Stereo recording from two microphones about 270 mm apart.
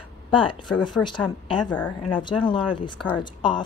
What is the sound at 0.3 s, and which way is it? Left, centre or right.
Speech, centre.